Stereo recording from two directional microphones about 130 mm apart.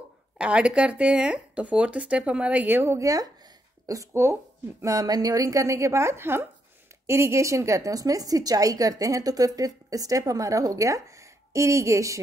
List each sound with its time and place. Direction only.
0.4 s a woman's voice: 10° right (ahead or behind)